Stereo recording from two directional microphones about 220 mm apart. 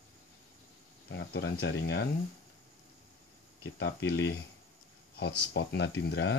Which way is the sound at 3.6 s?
50° left (ahead or behind).